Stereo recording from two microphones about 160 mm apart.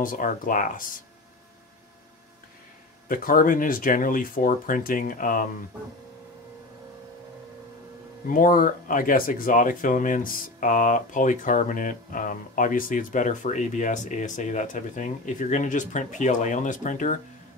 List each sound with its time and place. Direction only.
0.0 s speech: 60° left (ahead or behind)
3.1 s speech: 60° left (ahead or behind)
8.3 s speech: 60° left (ahead or behind)